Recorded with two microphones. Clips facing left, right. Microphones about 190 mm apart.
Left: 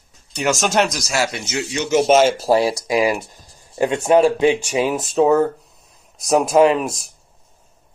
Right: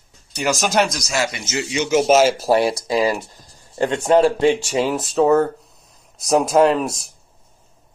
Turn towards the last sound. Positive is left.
turn(degrees=0)  # may be behind; listen again after turning